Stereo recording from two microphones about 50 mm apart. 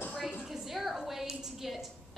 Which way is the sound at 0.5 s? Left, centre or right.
Centre.